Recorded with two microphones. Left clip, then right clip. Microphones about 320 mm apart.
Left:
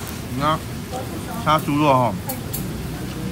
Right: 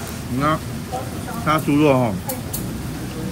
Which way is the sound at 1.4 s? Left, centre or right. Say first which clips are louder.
Right 1 dB; centre.